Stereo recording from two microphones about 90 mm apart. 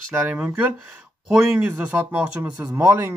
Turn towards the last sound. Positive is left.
turn(degrees=-25)  # may be behind; listen again after turning